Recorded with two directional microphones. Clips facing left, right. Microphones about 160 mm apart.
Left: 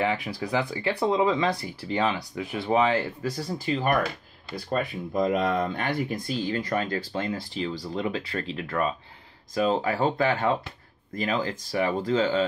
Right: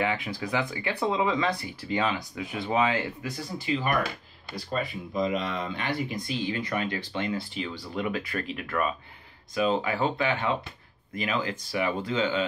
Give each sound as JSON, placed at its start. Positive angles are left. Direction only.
{"t": 0.4, "sound": "speech", "side_deg": 30}
{"t": 3.2, "sound": "speech", "side_deg": 40}
{"t": 4.7, "sound": "speech", "side_deg": 55}